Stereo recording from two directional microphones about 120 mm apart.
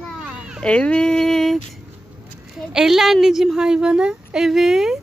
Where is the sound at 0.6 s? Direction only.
10° left (ahead or behind).